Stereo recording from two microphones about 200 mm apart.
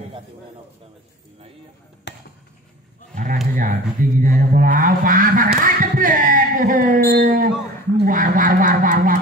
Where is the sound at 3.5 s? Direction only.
45° right (ahead or behind).